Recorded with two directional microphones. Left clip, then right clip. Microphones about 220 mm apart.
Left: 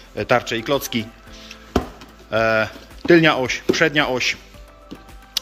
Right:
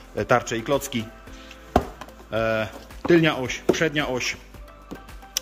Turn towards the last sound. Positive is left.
turn(degrees=-20)  # may be behind; listen again after turning